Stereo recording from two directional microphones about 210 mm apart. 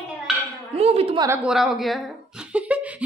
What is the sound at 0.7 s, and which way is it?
Speech, 30° right (ahead or behind).